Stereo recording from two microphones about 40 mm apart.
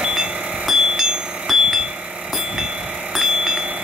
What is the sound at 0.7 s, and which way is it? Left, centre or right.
Music, centre.